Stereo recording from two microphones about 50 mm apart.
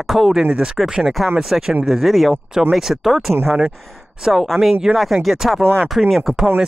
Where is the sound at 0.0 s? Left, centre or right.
Centre.